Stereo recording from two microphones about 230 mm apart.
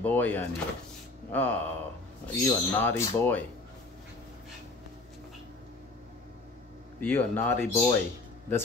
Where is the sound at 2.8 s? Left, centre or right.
Centre.